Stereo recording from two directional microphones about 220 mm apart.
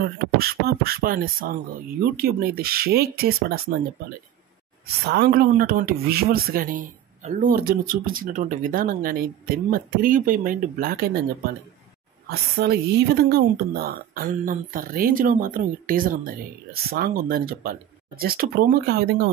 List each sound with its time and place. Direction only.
0.0 s speech: 45° right (ahead or behind)
4.8 s speech: 45° right (ahead or behind)
12.3 s speech: 45° right (ahead or behind)